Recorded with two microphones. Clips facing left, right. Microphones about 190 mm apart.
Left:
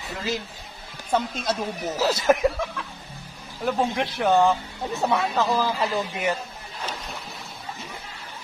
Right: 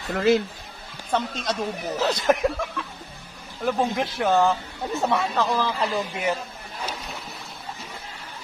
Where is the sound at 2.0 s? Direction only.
5° left (ahead or behind).